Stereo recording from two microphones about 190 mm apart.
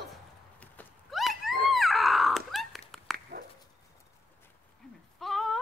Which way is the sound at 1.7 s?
Centre (ahead or behind).